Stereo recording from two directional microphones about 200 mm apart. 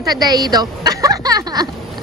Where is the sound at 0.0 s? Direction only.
20° right (ahead or behind).